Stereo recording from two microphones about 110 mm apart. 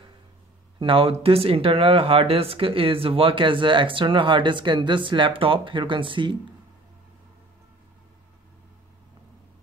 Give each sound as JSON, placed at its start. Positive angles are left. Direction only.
{"t": 0.7, "sound": "speech", "side_deg": -55}